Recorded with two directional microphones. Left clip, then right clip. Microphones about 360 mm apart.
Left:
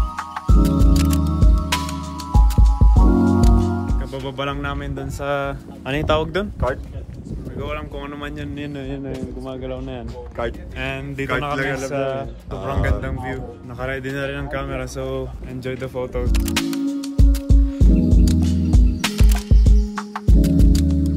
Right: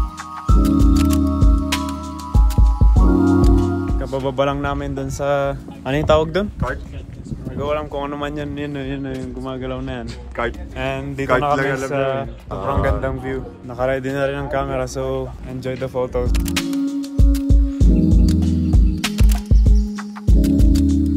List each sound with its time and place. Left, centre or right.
0.5 s music: centre
7.5 s speech: centre
8.5 s a man's voice: centre
10.8 s a man's voice: centre
12.6 s a man's voice: centre
18.7 s music: centre